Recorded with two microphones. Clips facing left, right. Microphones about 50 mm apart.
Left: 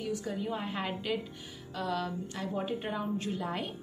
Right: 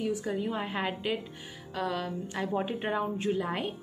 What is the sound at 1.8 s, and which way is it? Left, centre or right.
A woman's voice, right.